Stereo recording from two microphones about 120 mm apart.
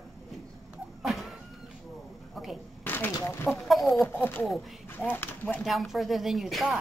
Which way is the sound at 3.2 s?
15° left (ahead or behind).